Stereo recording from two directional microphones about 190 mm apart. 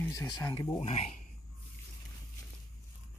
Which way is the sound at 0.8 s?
35° left (ahead or behind).